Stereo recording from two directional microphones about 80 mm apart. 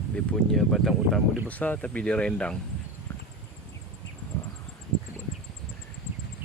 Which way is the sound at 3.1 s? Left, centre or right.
Left.